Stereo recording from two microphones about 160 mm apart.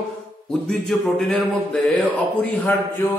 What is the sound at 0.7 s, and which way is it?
Speech, centre (ahead or behind).